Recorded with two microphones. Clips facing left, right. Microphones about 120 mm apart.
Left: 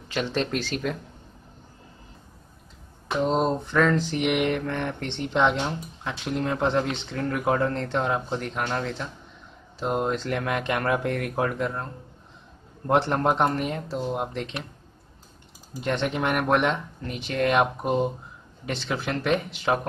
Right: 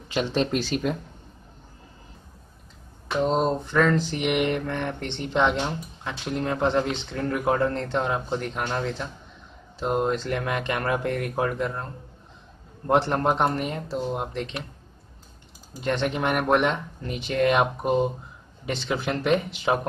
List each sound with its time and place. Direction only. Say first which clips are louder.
0.1 s speech: right 2 dB; 15° right (ahead or behind)
3.2 s mantra: right 1 dB; centre (ahead or behind)
15.8 s mantra: right 1 dB; centre (ahead or behind)
18.9 s speech: right 2 dB; 10° right (ahead or behind)